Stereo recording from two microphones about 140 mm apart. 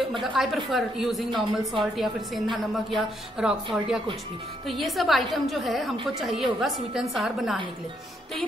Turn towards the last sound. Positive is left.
turn(degrees=0)  # may be behind; listen again after turning